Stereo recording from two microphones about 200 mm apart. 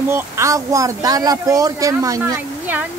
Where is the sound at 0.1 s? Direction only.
15° right (ahead or behind).